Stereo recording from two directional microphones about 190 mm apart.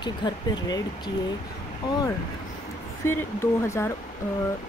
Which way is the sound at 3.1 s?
15° left (ahead or behind).